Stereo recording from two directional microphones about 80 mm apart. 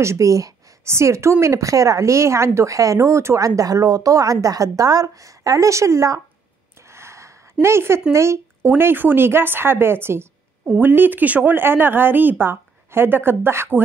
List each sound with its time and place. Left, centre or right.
0.0 s a woman's voice: right
6.9 s a sound: right
7.6 s a woman's voice: right
8.6 s speech: right